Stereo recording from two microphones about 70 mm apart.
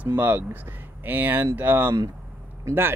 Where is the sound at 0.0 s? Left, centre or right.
Right.